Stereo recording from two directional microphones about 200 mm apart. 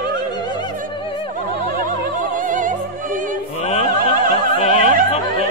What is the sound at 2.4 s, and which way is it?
Opera, 40° right (ahead or behind).